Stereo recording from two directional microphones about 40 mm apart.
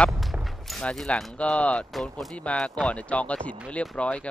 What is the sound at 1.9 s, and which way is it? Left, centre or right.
Fusillade, centre.